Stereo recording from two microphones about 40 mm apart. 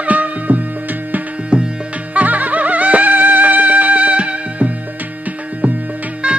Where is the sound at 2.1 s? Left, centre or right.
Right.